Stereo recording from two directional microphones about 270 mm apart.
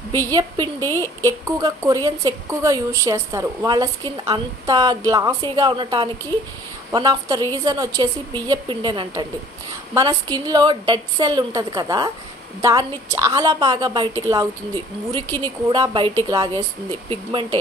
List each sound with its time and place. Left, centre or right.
0.3 s a woman's voice: centre
0.7 s speech: centre
1.4 s a woman's voice: centre